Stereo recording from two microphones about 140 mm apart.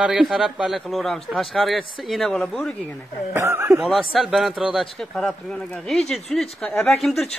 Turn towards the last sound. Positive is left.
turn(degrees=0)  # may be behind; listen again after turning